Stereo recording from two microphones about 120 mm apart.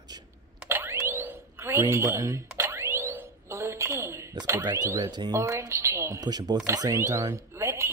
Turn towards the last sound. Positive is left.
turn(degrees=-25)  # may be behind; listen again after turning